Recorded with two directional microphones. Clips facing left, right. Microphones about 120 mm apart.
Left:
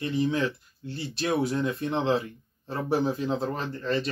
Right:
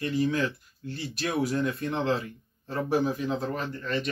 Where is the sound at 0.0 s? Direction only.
25° left (ahead or behind).